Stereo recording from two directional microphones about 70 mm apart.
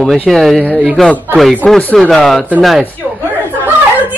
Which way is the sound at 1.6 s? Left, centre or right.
Centre.